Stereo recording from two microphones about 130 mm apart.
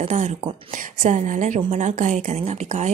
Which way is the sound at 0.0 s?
65° right (ahead or behind).